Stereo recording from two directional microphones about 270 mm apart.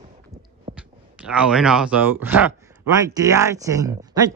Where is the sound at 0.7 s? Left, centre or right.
Centre.